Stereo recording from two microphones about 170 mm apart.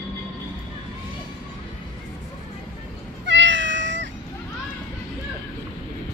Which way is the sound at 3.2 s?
90° right.